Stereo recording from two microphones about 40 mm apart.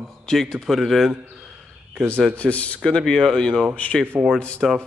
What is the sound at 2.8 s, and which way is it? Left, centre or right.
Speech, centre.